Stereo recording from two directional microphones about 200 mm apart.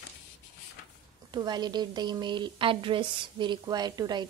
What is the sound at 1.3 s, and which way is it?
A woman's voice, 20° right (ahead or behind).